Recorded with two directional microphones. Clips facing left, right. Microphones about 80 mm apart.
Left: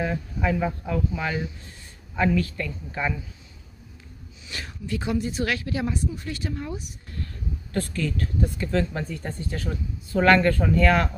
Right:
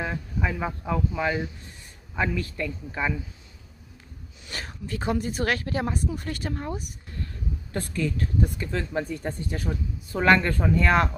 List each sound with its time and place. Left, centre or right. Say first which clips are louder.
0.0 s speech: left 3 dB; centre
4.5 s speech: left 2 dB; right
7.7 s speech: left 1 dB; centre